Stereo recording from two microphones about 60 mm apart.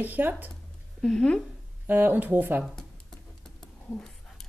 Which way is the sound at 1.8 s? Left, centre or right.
Right.